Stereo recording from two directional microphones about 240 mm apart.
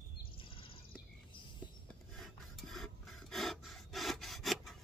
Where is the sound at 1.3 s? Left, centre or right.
Centre.